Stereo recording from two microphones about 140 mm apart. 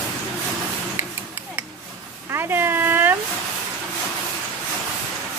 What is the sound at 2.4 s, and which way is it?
Speech, 15° right (ahead or behind).